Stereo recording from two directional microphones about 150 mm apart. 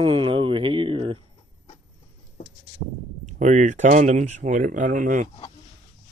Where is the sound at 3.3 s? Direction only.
55° right (ahead or behind).